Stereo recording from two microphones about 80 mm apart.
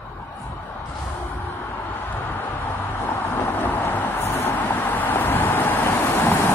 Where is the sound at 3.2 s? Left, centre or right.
Left.